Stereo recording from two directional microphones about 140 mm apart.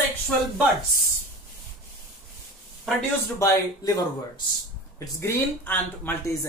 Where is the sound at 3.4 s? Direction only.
25° left (ahead or behind).